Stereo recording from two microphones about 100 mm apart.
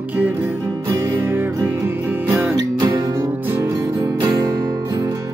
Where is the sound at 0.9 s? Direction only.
35° right (ahead or behind).